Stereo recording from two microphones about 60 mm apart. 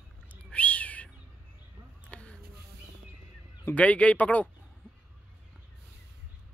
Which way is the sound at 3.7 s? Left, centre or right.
Left.